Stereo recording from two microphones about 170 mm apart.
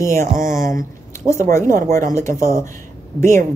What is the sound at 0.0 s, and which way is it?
Speech, 15° left (ahead or behind).